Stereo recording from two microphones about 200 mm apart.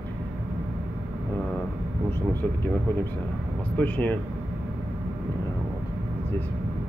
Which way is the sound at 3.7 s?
10° left (ahead or behind).